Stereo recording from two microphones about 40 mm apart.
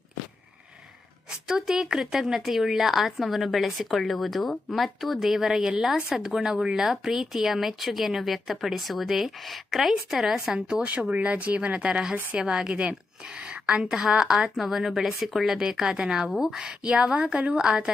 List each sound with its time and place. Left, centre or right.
1.5 s speech: centre
10.7 s speech: right
11.9 s a woman's voice: centre
13.4 s a sound: right
13.8 s a woman's voice: centre
14.6 s speech: centre
16.8 s speech: right
17.6 s a woman's voice: right